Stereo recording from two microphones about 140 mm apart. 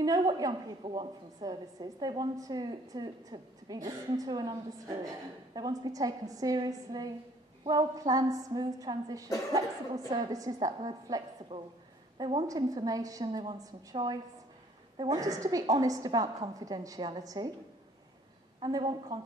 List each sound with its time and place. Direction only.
0.0 s a woman's voice: 25° right (ahead or behind)
12.4 s a woman's voice: 25° right (ahead or behind)
18.6 s a woman's voice: 30° right (ahead or behind)